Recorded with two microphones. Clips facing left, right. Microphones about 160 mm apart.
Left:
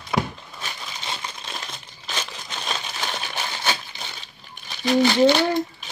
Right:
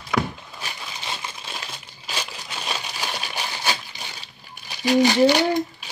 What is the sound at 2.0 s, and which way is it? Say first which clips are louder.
Crushing: even; 10° right (ahead or behind).